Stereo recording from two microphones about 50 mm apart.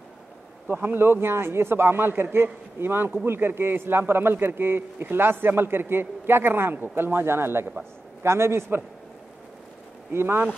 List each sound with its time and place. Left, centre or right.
0.7 s a man's voice: right
10.1 s a man's voice: right